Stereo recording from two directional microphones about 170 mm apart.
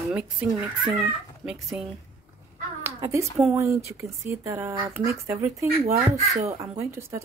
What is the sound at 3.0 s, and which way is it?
Speech, 15° right (ahead or behind).